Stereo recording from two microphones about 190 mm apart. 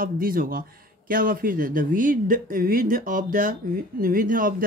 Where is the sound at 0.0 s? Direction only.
50° right (ahead or behind).